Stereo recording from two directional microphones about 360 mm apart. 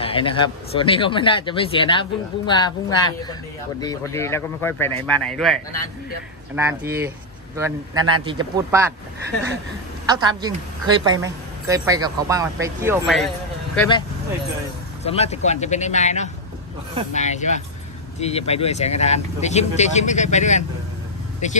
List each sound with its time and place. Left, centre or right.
0.0 s a man's voice: centre
10.0 s a woman's voice: centre
13.7 s speech: centre
15.0 s speech: centre